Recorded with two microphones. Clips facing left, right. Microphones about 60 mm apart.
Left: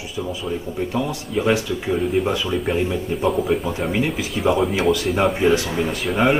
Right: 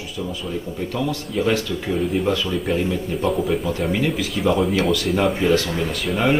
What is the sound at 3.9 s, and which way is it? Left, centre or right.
Speech, centre.